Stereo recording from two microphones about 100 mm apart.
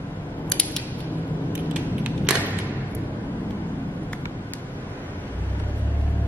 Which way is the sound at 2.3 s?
10° right (ahead or behind).